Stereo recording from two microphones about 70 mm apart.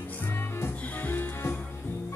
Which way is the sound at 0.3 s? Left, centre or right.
Left.